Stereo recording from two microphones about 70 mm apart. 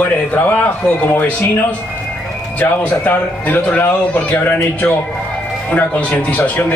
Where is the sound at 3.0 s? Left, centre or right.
Left.